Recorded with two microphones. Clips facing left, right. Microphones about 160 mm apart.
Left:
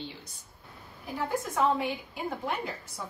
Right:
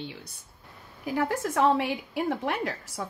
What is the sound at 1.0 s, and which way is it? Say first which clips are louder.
A woman's voice: right 4 dB; 80° right.